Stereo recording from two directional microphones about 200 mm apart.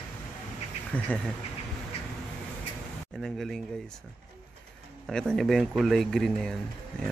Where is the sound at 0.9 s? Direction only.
5° left (ahead or behind).